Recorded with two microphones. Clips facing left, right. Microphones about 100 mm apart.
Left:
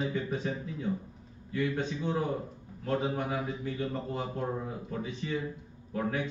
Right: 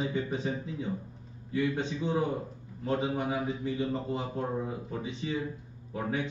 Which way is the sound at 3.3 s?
10° right (ahead or behind).